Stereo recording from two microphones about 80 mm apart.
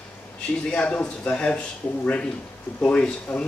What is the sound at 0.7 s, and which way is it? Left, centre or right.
Speech, centre.